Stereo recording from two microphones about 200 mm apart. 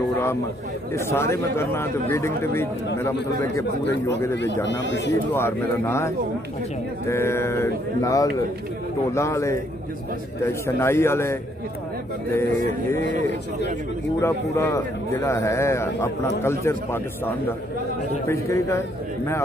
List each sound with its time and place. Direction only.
0.9 s a man's voice: 15° left (ahead or behind)
4.6 s speech: 60° left (ahead or behind)
5.3 s a man's voice: 10° left (ahead or behind)
10.8 s a man's voice: 10° left (ahead or behind)
14.2 s a man's voice: 15° left (ahead or behind)
18.3 s a man's voice: 15° left (ahead or behind)